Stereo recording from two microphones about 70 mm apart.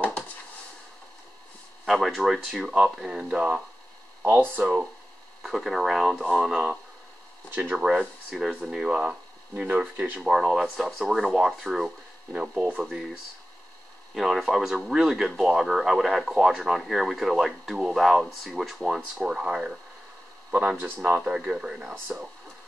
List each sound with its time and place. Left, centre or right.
1.9 s speech: centre
4.2 s speech: right
5.4 s speech: centre
10.2 s speech: centre
14.1 s speech: centre
20.7 s speech: right